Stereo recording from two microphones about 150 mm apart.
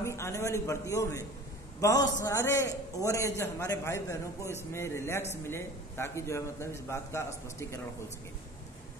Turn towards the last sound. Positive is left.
turn(degrees=20)  # may be behind; listen again after turning